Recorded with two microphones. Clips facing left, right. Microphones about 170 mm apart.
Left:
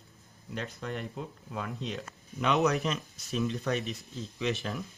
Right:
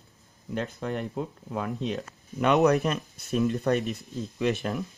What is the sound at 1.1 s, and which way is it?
Speech, 50° right (ahead or behind).